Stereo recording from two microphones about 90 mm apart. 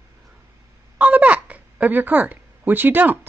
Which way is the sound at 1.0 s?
15° right (ahead or behind).